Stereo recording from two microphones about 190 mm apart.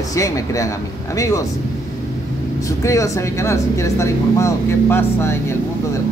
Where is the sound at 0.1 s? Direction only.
15° left (ahead or behind).